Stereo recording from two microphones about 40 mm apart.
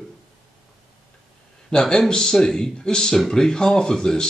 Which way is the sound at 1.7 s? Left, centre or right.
Centre.